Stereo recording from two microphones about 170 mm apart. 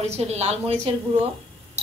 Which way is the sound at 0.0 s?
40° right (ahead or behind).